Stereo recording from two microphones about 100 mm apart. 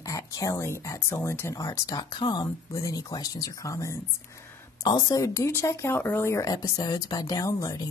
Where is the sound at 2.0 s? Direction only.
50° left (ahead or behind).